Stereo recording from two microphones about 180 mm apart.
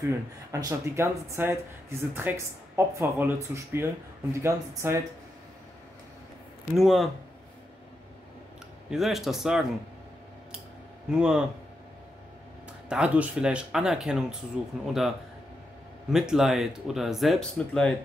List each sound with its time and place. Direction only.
0.0 s speech: 15° right (ahead or behind)
6.7 s speech: centre (ahead or behind)
8.9 s speech: centre (ahead or behind)
11.1 s speech: 5° right (ahead or behind)
12.9 s speech: 5° right (ahead or behind)
16.1 s speech: centre (ahead or behind)